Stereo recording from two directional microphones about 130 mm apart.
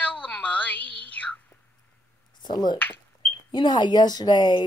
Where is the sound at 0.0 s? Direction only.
10° left (ahead or behind).